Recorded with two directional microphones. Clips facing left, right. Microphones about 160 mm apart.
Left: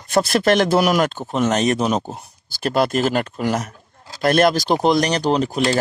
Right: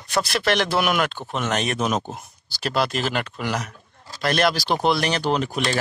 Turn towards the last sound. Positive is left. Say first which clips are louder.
# left 4 dB
turn(degrees=35)  # may be behind; listen again after turning